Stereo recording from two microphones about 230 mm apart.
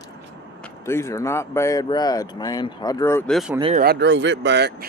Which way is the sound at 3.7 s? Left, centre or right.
Right.